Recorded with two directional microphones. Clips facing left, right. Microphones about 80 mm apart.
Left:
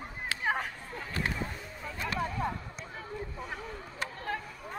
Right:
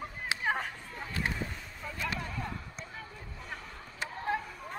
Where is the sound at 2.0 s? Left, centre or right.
Left.